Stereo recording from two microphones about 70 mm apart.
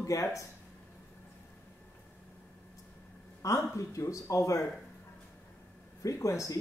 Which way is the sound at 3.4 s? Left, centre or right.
Left.